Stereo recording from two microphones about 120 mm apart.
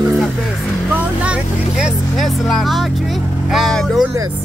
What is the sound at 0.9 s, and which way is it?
Speech, 10° right (ahead or behind).